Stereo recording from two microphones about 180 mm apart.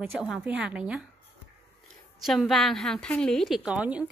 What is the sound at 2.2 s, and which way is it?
A woman's voice, centre (ahead or behind).